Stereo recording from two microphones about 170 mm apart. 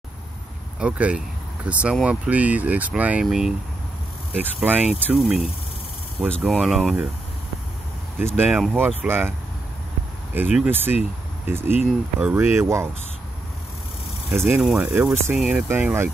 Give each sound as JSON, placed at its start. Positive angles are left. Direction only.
{"t": 0.7, "sound": "speech", "side_deg": -5}
{"t": 6.2, "sound": "speech", "side_deg": 5}
{"t": 8.2, "sound": "speech", "side_deg": -10}
{"t": 10.3, "sound": "speech", "side_deg": -10}
{"t": 14.5, "sound": "speech", "side_deg": -5}